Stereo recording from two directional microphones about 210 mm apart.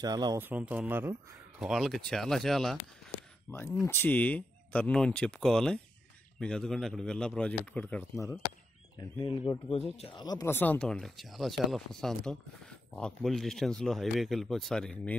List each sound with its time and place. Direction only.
0.0 s speech: 20° right (ahead or behind); by 8.4 s 10° left (ahead or behind)
9.2 s speech: 25° left (ahead or behind); by 15.1 s 5° left (ahead or behind)